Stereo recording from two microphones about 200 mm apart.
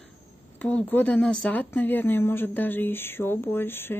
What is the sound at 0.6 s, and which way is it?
Speech, 10° left (ahead or behind).